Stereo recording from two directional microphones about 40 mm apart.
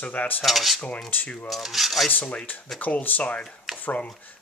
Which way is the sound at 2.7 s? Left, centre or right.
Left.